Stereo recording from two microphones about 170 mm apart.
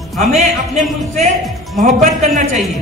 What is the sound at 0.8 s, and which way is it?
A man's voice, 45° right (ahead or behind).